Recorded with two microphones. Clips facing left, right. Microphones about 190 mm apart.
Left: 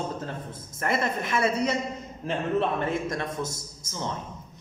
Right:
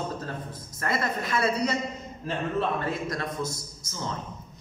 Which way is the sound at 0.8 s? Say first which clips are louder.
Left 2 dB; 25° left (ahead or behind).